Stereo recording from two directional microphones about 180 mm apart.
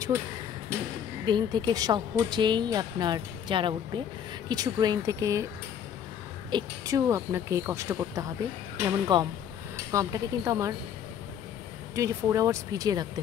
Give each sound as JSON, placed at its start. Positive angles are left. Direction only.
{"t": 0.7, "sound": "a sound", "side_deg": -15}
{"t": 1.2, "sound": "a woman's voice", "side_deg": -25}
{"t": 6.5, "sound": "a woman's voice", "side_deg": -20}
{"t": 11.9, "sound": "speech", "side_deg": -15}